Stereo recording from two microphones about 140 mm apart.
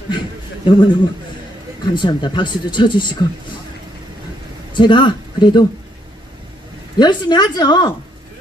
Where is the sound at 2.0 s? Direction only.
35° left (ahead or behind).